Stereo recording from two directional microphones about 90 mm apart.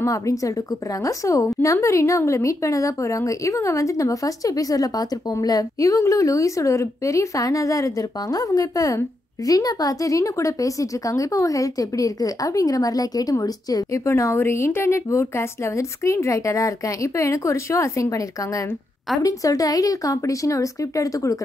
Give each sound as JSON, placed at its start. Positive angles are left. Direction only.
{"t": 0.0, "sound": "a woman's voice", "side_deg": 40}